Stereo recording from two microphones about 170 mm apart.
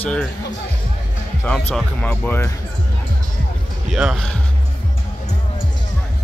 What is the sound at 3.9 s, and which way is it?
Speech, centre (ahead or behind).